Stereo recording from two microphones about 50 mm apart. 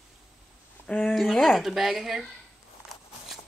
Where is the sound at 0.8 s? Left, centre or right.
Centre.